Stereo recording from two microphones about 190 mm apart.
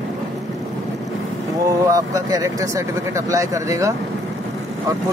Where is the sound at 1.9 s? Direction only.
20° right (ahead or behind).